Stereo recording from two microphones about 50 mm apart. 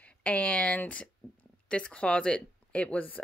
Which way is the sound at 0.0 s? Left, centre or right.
Left.